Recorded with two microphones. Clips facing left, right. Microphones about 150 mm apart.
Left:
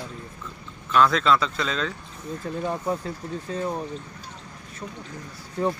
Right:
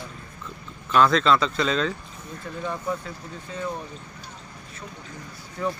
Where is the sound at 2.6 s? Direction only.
35° left (ahead or behind).